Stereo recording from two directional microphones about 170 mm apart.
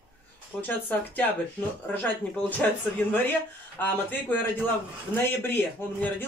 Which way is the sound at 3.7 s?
10° left (ahead or behind).